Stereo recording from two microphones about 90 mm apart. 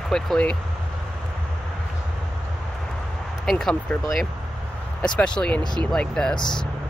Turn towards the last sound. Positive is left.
turn(degrees=10)  # may be behind; listen again after turning